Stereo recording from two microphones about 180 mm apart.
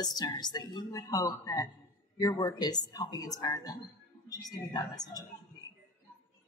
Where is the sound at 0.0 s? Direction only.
20° left (ahead or behind).